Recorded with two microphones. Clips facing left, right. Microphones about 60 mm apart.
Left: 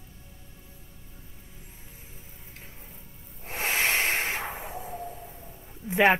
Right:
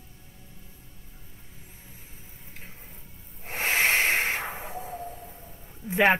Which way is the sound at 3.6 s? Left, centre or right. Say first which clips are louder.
Right 3 dB; centre.